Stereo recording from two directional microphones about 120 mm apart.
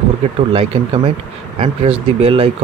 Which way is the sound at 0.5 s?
50° right (ahead or behind).